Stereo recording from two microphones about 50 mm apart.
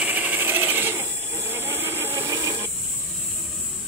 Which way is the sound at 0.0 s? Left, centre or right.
Right.